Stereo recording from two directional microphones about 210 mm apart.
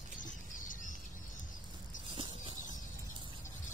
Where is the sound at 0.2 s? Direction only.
40° left (ahead or behind).